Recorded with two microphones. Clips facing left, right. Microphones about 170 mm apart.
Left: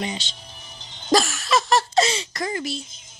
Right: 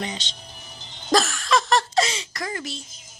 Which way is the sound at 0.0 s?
10° left (ahead or behind).